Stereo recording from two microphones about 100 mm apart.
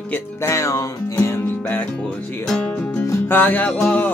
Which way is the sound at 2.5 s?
10° left (ahead or behind).